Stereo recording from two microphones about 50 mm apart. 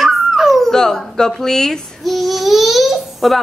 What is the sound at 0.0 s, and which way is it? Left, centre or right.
Dog, centre.